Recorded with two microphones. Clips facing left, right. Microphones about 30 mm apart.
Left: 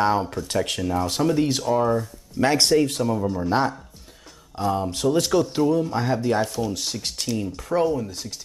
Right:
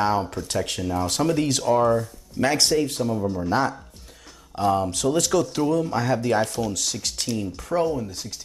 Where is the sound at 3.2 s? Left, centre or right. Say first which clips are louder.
Right 1 dB; centre.